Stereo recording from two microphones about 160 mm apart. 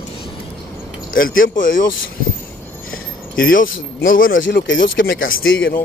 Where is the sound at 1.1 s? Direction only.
60° left (ahead or behind).